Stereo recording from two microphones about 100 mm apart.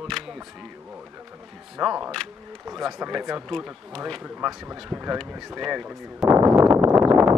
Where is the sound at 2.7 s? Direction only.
Centre (ahead or behind).